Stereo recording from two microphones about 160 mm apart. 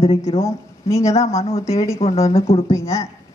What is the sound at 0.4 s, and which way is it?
Speech, 15° left (ahead or behind).